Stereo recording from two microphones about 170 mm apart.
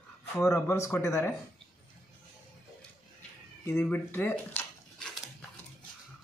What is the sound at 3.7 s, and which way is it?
Speech, 10° left (ahead or behind).